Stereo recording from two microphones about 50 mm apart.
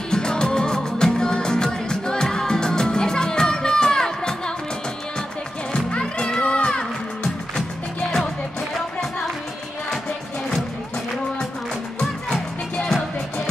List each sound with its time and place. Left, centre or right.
0.1 s music: centre
5.9 s music: centre